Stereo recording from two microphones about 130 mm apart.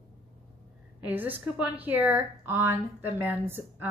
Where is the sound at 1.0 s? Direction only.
15° right (ahead or behind).